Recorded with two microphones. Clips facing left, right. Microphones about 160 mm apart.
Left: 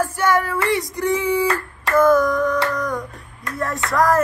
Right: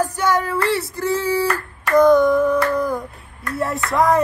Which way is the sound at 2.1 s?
Centre (ahead or behind).